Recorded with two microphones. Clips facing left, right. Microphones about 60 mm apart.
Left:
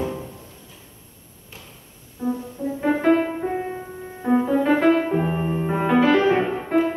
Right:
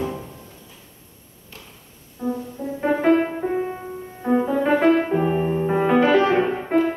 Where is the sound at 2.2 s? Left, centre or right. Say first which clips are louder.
Left 1 dB; centre.